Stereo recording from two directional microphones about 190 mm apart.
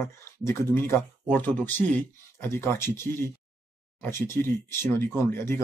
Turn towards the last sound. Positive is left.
turn(degrees=10)  # may be behind; listen again after turning